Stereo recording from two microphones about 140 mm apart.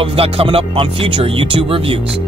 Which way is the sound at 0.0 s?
40° right (ahead or behind).